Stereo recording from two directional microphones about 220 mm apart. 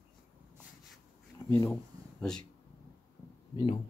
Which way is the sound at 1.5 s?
10° left (ahead or behind).